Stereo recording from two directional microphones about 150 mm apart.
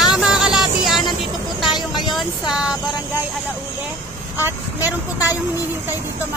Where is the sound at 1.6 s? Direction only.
30° left (ahead or behind).